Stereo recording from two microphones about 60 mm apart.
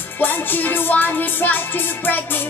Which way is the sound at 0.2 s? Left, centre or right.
Left.